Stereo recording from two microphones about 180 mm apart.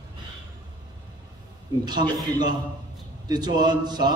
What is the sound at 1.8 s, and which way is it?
A man's voice, 25° right (ahead or behind).